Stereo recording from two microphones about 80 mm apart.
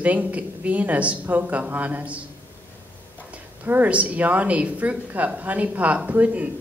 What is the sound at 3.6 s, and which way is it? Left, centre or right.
Speech, right.